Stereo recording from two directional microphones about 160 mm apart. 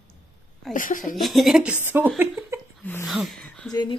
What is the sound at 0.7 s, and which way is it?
Speech, 55° left (ahead or behind).